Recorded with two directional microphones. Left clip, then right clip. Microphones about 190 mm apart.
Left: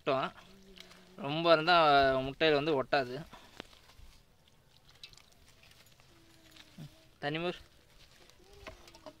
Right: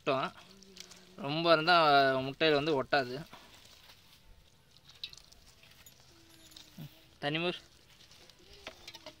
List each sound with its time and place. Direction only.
0.0 s speech: 10° right (ahead or behind)
6.8 s a sound: 20° right (ahead or behind)
8.6 s stir: 35° left (ahead or behind)